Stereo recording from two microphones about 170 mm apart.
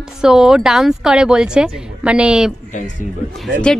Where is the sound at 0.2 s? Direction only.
5° right (ahead or behind).